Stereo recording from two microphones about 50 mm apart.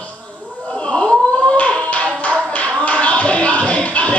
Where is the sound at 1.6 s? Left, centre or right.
Left.